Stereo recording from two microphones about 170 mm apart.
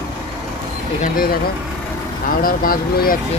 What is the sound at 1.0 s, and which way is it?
Speech, 60° left (ahead or behind).